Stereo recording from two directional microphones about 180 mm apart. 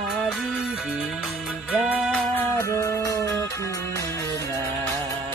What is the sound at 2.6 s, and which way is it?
Music, 15° left (ahead or behind).